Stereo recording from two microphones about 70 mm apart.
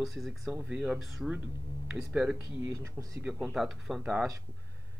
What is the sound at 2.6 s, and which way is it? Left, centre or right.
Speech, right.